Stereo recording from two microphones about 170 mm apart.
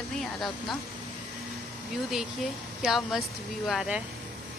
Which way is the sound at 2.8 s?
Centre (ahead or behind).